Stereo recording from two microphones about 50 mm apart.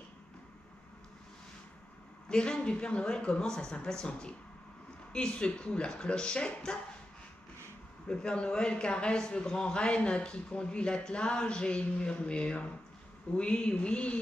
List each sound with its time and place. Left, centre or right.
2.2 s a man's voice: centre
8.1 s a man's voice: centre